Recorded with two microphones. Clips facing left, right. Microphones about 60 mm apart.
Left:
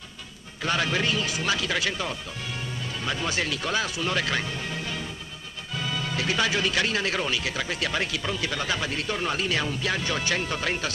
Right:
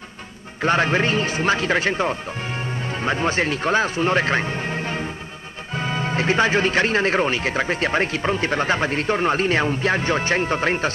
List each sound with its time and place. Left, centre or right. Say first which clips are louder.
0.6 s speech: right 7 dB; right